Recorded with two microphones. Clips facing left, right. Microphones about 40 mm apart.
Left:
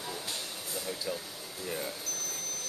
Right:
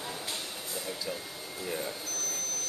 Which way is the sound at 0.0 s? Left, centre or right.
Centre.